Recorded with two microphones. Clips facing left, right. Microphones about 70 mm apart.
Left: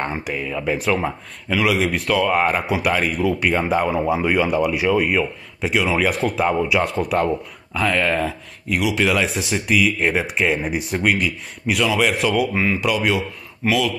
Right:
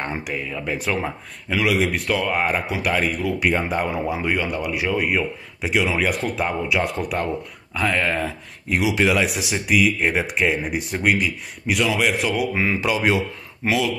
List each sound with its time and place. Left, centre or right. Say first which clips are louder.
0.0 s speech: left 2 dB; centre
8.6 s speech: even; centre
9.0 s speech: even; centre
12.6 s speech: left 1 dB; right